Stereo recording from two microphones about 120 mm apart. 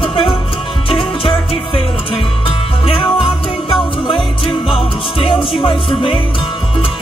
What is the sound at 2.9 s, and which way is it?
Music, 50° left (ahead or behind).